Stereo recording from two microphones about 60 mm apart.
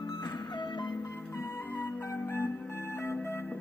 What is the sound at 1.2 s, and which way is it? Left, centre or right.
Music, left.